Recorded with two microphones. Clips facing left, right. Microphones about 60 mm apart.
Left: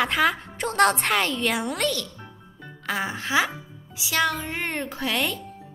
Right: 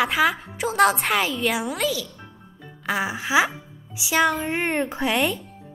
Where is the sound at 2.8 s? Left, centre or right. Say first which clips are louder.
Right 3 dB; centre.